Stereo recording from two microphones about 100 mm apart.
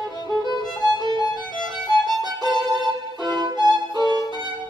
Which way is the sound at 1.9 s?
45° right (ahead or behind).